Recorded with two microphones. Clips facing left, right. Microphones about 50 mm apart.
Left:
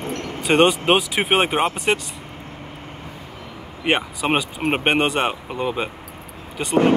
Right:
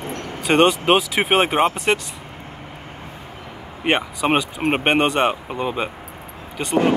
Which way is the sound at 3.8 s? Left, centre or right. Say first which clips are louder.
Right 1 dB; centre.